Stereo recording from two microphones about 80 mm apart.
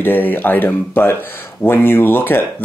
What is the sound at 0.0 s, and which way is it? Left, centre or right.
Speech, left.